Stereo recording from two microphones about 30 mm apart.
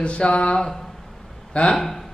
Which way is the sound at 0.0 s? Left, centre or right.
Left.